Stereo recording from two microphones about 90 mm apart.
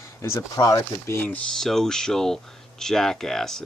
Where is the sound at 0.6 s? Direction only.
45° left (ahead or behind).